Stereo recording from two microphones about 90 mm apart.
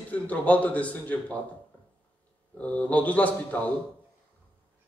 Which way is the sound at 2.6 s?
15° left (ahead or behind).